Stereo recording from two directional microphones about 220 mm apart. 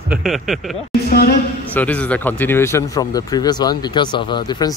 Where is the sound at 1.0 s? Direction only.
40° left (ahead or behind).